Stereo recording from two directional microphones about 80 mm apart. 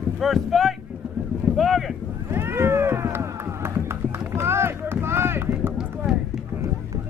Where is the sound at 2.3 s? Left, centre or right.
Right.